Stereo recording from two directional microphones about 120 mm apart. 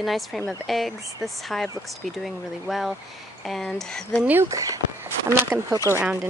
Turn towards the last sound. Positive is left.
turn(degrees=-15)  # may be behind; listen again after turning